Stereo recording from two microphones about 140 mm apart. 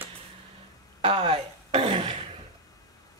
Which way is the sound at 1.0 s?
40° right (ahead or behind).